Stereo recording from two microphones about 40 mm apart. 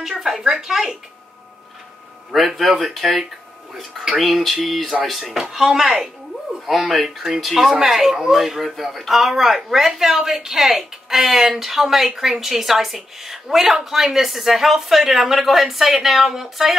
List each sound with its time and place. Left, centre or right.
0.2 s a woman's voice: centre
2.3 s a woman's voice: centre